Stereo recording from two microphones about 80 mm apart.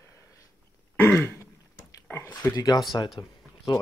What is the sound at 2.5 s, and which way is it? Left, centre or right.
Speech, left.